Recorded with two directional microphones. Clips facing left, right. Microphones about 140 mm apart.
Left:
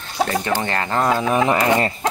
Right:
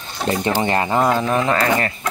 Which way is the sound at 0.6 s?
15° right (ahead or behind).